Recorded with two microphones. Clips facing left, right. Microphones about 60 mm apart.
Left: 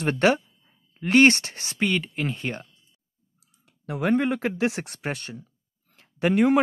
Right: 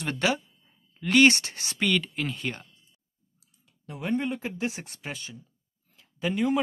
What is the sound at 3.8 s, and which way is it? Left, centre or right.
Speech, left.